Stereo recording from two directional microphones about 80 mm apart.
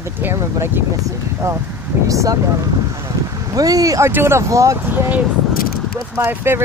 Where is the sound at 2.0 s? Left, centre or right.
Right.